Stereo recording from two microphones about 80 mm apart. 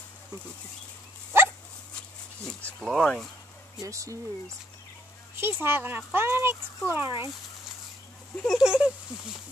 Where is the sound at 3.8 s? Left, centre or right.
Right.